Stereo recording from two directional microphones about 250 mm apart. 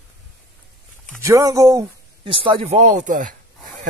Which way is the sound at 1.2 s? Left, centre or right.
Centre.